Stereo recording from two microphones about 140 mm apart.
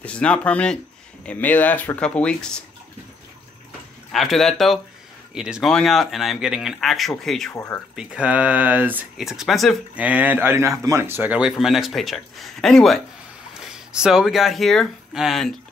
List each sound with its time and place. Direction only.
0.0 s speech: 10° left (ahead or behind)
4.1 s speech: centre (ahead or behind)
7.5 s speech: 20° left (ahead or behind)
7.9 s speech: 5° right (ahead or behind)
9.2 s speech: centre (ahead or behind)
10.0 s speech: 10° right (ahead or behind)